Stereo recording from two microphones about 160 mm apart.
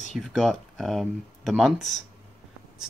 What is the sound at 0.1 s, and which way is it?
Speech, centre (ahead or behind).